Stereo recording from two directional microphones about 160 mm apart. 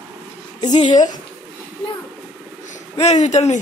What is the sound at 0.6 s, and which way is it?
Speech, 25° left (ahead or behind).